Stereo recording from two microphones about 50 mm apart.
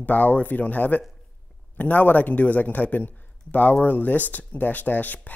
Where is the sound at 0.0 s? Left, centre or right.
Left.